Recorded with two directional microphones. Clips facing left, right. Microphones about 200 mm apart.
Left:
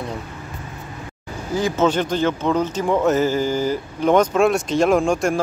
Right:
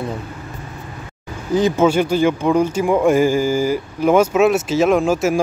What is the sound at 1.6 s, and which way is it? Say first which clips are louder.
Speech: right 4 dB; 10° right (ahead or behind).